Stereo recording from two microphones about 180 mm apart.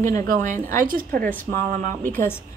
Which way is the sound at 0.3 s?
50° right (ahead or behind).